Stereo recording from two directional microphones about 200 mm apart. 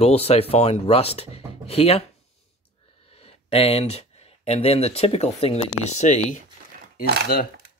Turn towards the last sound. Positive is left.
turn(degrees=50)  # may be behind; listen again after turning